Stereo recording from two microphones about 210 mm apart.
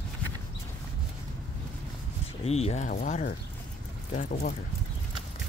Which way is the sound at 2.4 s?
30° left (ahead or behind).